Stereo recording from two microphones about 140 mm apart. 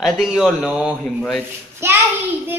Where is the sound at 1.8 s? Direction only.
20° right (ahead or behind).